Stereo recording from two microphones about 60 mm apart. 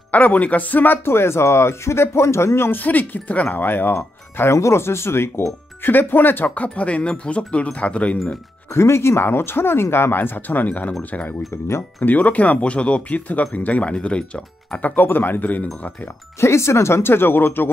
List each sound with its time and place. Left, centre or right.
0.1 s speech: left
1.1 s speech: left
2.8 s speech: left
3.9 s speech: left
8.7 s speech: left
11.5 s speech: left
12.0 s speech: left
14.8 s speech: left
16.3 s speech: left